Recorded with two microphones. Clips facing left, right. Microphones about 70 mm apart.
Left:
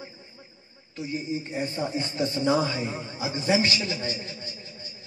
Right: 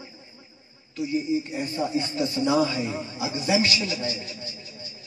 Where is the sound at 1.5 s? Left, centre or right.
Left.